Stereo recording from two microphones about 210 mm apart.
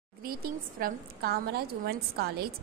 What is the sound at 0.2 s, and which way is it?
A woman's voice, 45° right (ahead or behind).